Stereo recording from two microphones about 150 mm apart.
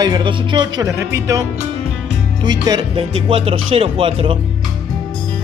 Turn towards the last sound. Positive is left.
turn(degrees=-35)  # may be behind; listen again after turning